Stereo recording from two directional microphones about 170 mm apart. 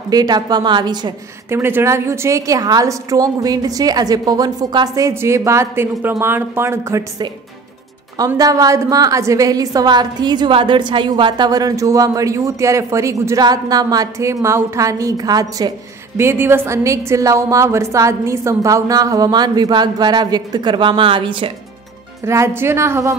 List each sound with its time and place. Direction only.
0.1 s a woman's voice: 25° right (ahead or behind)
1.5 s a woman's voice: 15° right (ahead or behind)
8.4 s a woman's voice: 20° right (ahead or behind)
22.2 s a woman's voice: 15° right (ahead or behind)